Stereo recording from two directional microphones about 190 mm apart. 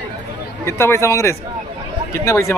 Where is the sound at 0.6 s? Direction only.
15° left (ahead or behind).